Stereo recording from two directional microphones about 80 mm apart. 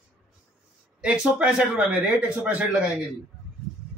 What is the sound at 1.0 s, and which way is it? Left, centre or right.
Speech, centre.